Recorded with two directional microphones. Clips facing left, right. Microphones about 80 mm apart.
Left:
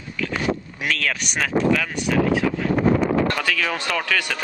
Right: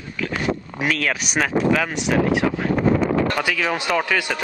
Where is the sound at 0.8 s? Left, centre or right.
Centre.